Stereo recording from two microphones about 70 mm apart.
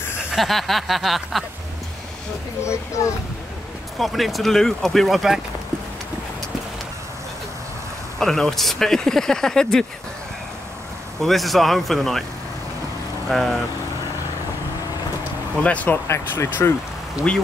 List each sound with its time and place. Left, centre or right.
0.3 s speech: centre
3.0 s speech: left
4.0 s speech: centre
8.2 s speech: centre
11.1 s speech: centre
13.3 s speech: centre
15.6 s speech: left
16.6 s speech: left
17.3 s speech: centre